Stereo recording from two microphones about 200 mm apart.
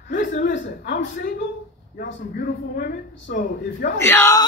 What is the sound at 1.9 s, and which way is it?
Speech, 50° left (ahead or behind).